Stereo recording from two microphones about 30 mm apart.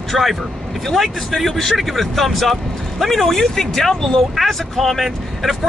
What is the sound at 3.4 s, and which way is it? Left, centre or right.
Speech, centre.